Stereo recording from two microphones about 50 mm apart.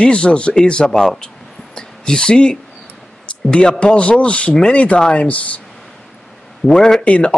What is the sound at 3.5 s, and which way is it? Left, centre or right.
Speech, centre.